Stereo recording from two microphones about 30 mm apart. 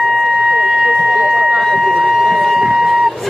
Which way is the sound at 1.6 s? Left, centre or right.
Centre.